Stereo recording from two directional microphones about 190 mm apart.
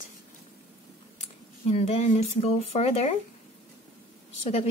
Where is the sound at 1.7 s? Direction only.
35° left (ahead or behind).